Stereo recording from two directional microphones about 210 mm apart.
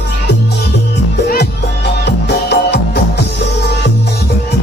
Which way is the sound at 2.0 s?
50° left (ahead or behind).